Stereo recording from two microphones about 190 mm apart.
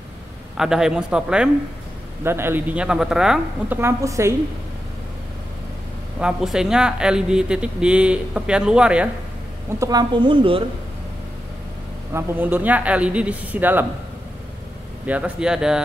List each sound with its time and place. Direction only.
0.6 s speech: 5° right (ahead or behind)
6.1 s speech: 5° right (ahead or behind)
9.7 s a woman's voice: 20° right (ahead or behind)
12.1 s speech: 10° right (ahead or behind)
15.0 s speech: 5° right (ahead or behind)